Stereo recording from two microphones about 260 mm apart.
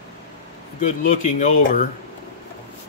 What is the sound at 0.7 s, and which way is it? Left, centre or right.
Speech, left.